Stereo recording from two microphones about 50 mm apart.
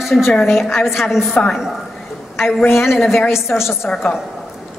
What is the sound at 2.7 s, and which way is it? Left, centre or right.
Speech, left.